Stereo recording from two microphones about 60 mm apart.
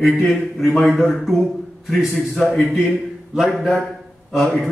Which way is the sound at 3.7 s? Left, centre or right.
Centre.